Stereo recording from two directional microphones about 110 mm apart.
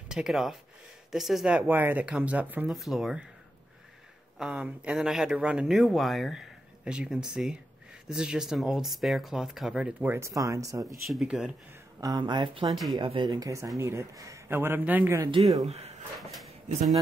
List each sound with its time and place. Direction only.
0.1 s speech: 5° right (ahead or behind)
1.7 s speech: 15° right (ahead or behind)
2.7 s speech: centre (ahead or behind)
4.4 s speech: 5° right (ahead or behind)
10.0 s a man's voice: 25° right (ahead or behind)
11.1 s speech: 5° right (ahead or behind)
12.0 s speech: 40° right (ahead or behind)
13.7 s a man's voice: 25° right (ahead or behind)
15.6 s speech: 75° right (ahead or behind)
16.2 s speech: centre (ahead or behind)